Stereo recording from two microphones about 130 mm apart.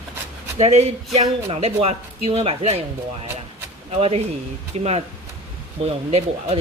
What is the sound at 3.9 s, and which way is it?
A woman's voice, 55° right (ahead or behind).